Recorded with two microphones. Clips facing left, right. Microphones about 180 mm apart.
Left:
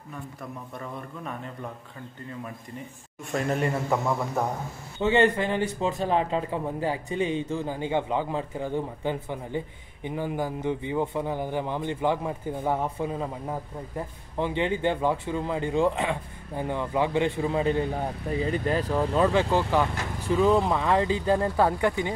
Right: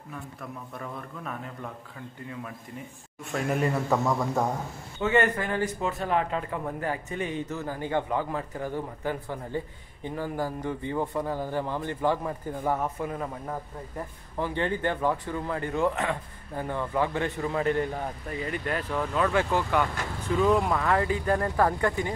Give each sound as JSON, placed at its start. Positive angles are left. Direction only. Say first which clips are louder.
{"t": 0.7, "sound": "a man's voice", "louder": "left 1 dB", "side_deg": 0}
{"t": 3.3, "sound": "a man's voice", "louder": "left 2 dB", "side_deg": 0}
{"t": 3.9, "sound": "a man's voice", "louder": "right 1 dB", "side_deg": 10}
{"t": 5.0, "sound": "a man's voice", "louder": "left 3 dB", "side_deg": 25}
{"t": 18.3, "sound": "speech", "louder": "left 6 dB", "side_deg": 30}